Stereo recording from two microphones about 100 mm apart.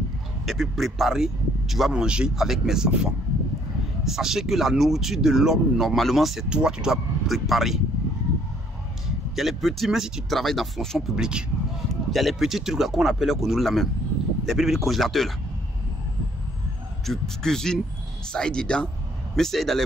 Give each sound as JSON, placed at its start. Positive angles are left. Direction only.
{"t": 0.5, "sound": "speech", "side_deg": 0}
{"t": 9.3, "sound": "speech", "side_deg": 0}
{"t": 17.0, "sound": "speech", "side_deg": 5}